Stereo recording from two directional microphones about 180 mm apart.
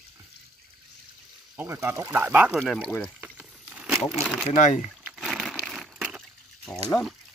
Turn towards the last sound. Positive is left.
turn(degrees=5)  # may be behind; listen again after turning